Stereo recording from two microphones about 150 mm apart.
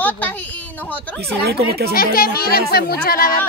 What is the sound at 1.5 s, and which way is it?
Speech, 90° right.